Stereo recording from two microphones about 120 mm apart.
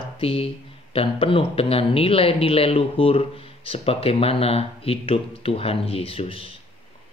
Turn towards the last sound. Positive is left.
turn(degrees=55)  # may be behind; listen again after turning